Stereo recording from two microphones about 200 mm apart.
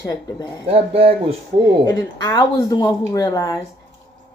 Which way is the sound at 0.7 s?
30° right (ahead or behind).